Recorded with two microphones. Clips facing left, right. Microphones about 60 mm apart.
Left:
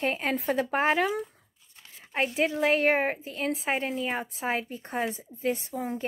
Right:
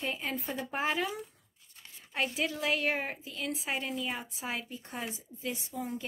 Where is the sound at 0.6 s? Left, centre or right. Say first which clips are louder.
Left 5 dB; left.